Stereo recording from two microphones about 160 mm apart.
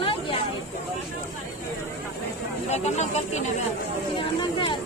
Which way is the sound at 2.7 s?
45° left (ahead or behind).